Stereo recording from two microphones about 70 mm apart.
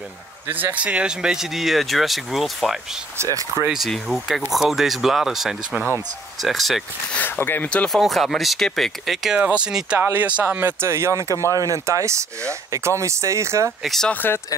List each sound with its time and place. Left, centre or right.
0.5 s speech: right; by 2.8 s centre
3.2 s speech: right
3.6 s speech: centre
7.2 s speech: left
7.9 s speech: centre
9.9 s speech: right
13.8 s speech: centre